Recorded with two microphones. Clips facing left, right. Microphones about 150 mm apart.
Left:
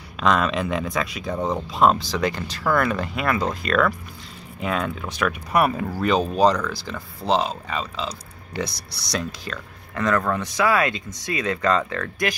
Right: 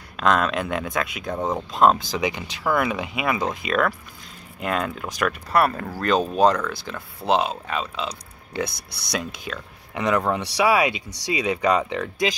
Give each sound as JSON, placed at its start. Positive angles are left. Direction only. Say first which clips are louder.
{"t": 0.2, "sound": "speech", "louder": "even", "side_deg": 0}
{"t": 2.1, "sound": "speech", "louder": "left 1 dB", "side_deg": -15}
{"t": 5.5, "sound": "speech", "louder": "left 1 dB", "side_deg": 10}
{"t": 8.6, "sound": "speech", "louder": "even", "side_deg": -55}
{"t": 9.5, "sound": "speech", "louder": "even", "side_deg": -5}
{"t": 9.9, "sound": "speech", "louder": "even", "side_deg": -15}